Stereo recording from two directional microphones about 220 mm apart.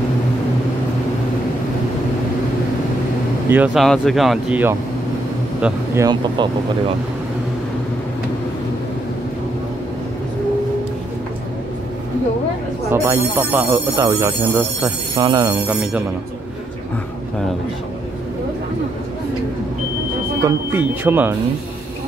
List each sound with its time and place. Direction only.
3.4 s speech: 5° right (ahead or behind)
12.9 s speech: 10° right (ahead or behind)
15.7 s speech: 5° right (ahead or behind)
20.4 s speech: 10° right (ahead or behind)